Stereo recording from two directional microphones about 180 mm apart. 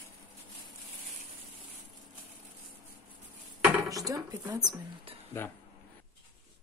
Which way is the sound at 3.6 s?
Centre (ahead or behind).